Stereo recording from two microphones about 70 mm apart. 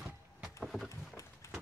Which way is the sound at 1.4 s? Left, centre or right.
Left.